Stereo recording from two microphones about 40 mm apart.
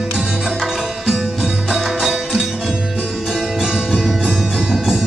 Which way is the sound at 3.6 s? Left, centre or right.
Centre.